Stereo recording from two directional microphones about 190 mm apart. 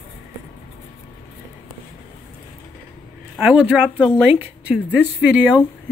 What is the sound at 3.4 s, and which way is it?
Speech, 5° right (ahead or behind).